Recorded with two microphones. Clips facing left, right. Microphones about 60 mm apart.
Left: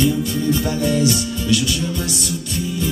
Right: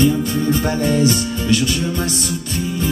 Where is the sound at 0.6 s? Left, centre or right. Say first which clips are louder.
Right 2 dB; right.